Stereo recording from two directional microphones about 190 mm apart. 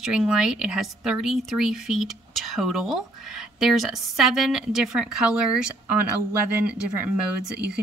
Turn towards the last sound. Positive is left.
turn(degrees=-5)  # may be behind; listen again after turning